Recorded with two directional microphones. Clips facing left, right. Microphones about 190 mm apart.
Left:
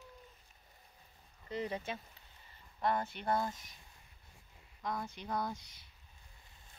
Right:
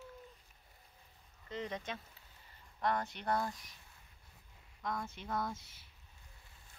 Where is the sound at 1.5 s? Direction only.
10° left (ahead or behind).